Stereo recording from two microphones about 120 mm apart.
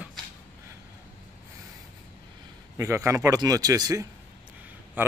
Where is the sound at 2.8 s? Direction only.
25° right (ahead or behind).